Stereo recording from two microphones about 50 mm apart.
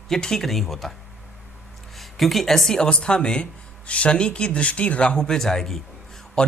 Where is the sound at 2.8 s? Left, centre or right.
Centre.